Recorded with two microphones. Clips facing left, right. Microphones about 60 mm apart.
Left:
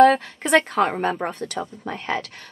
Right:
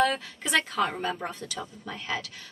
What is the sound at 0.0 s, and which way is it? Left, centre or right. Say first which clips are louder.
A woman's voice: left 11 dB; left.